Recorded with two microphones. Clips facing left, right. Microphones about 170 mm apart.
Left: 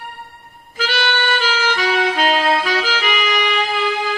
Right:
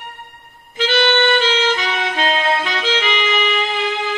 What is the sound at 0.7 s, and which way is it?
Music, 25° right (ahead or behind).